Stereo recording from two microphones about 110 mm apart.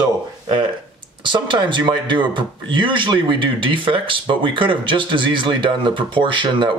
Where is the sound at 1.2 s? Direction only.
45° right (ahead or behind).